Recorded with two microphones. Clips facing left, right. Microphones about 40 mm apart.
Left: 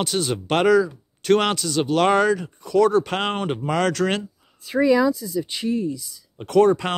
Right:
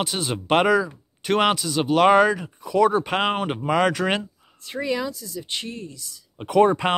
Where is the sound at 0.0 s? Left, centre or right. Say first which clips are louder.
Left 3 dB; centre.